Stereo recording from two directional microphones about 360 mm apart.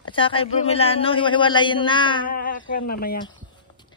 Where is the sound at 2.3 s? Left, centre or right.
Left.